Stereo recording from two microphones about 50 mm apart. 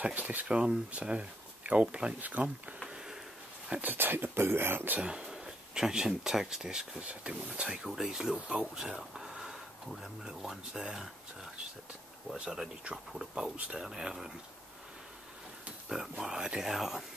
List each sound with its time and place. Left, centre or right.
0.0 s speech: right
0.5 s speech: centre
2.1 s speech: right
3.8 s speech: right
5.0 s speech: centre
7.9 s speech: centre
12.9 s speech: centre
15.9 s speech: centre